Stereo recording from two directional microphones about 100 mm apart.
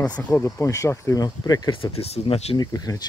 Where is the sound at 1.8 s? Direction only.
90° left.